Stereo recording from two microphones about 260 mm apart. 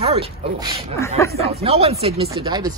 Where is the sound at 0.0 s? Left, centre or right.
Right.